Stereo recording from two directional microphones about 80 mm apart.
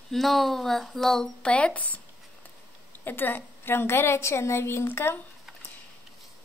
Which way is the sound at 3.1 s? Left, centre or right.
Left.